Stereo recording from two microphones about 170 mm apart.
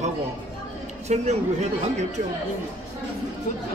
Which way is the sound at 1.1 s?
40° right (ahead or behind).